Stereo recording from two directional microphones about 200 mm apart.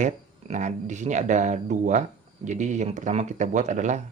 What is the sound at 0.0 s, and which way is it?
Speech, 35° right (ahead or behind).